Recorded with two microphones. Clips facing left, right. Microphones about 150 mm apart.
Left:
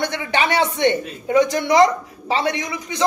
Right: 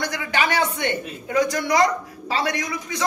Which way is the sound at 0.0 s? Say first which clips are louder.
Left 3 dB; 25° left (ahead or behind).